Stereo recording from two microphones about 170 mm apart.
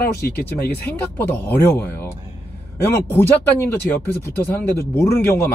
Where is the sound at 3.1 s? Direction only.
10° left (ahead or behind).